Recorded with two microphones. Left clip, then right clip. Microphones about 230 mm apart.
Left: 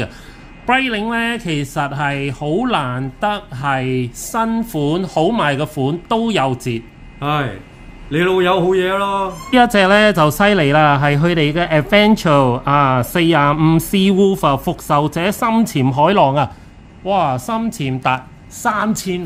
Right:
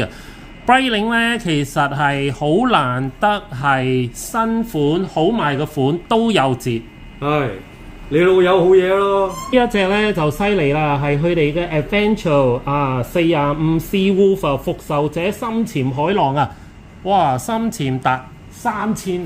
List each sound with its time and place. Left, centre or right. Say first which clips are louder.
0.7 s a man's voice: right 2 dB; centre
7.2 s a man's voice: right 1 dB; left
9.5 s speech: left 6 dB; left
16.2 s a woman's voice: even; centre
17.0 s a man's voice: right 1 dB; centre
18.6 s a woman's voice: left 3 dB; centre